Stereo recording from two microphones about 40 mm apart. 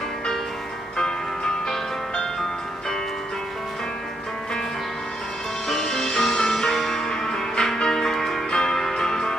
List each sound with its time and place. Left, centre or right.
0.9 s music: centre
5.7 s music: centre